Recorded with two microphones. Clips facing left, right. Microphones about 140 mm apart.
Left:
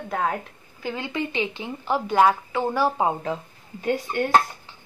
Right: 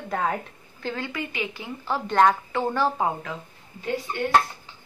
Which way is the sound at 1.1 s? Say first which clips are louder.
Left 4 dB; 25° left (ahead or behind).